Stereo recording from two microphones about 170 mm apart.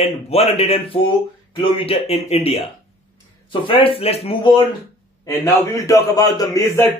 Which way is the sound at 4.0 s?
35° left (ahead or behind).